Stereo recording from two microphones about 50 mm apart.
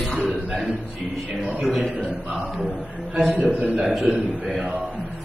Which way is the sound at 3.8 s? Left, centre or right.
Centre.